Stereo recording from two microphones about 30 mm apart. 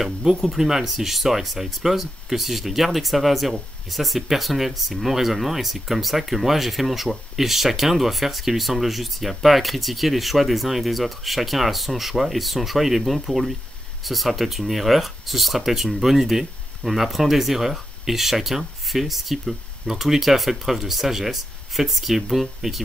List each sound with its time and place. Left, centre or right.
0.2 s speech: centre